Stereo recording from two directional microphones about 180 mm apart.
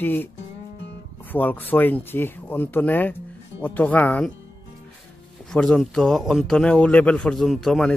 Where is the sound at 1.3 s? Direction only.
10° left (ahead or behind).